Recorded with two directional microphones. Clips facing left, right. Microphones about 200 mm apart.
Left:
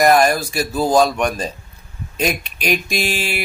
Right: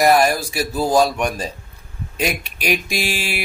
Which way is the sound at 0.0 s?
5° right (ahead or behind).